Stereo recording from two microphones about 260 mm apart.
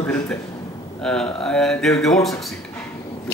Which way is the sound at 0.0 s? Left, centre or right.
Centre.